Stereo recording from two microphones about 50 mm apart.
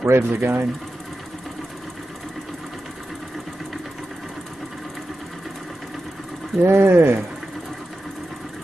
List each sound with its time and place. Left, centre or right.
0.0 s speech: right
6.6 s speech: right